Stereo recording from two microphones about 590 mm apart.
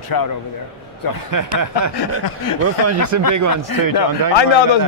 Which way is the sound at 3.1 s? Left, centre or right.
Right.